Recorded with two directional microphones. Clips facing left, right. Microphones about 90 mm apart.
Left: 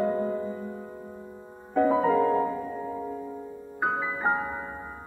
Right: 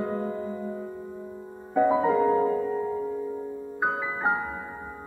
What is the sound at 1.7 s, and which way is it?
Music, 10° right (ahead or behind).